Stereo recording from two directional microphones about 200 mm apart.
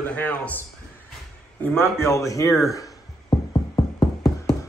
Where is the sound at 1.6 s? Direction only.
10° left (ahead or behind).